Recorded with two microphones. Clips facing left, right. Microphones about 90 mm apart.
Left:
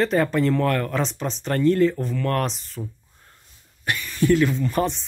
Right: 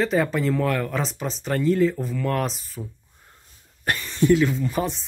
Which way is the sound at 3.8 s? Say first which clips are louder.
Right 1 dB; 35° right (ahead or behind).